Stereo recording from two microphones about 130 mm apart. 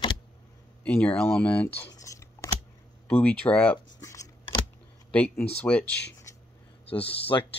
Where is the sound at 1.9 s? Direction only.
25° left (ahead or behind).